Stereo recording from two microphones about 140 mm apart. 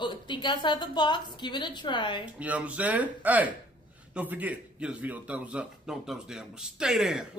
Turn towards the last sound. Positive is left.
turn(degrees=-5)  # may be behind; listen again after turning